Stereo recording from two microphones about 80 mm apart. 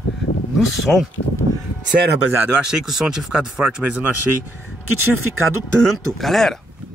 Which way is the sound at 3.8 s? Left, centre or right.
Right.